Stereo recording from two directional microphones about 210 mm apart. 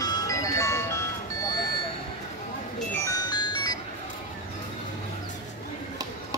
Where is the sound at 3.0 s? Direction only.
20° left (ahead or behind).